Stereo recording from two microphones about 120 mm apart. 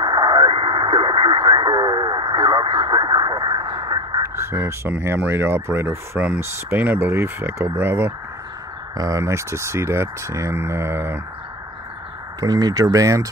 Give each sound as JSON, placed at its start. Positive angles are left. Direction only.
{"t": 0.0, "sound": "speech", "side_deg": -35}
{"t": 8.9, "sound": "speech", "side_deg": -30}
{"t": 12.4, "sound": "speech", "side_deg": -35}